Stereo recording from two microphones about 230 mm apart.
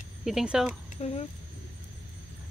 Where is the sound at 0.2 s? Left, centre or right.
Centre.